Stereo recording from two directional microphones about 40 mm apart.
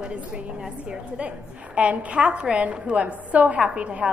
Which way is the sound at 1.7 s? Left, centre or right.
Right.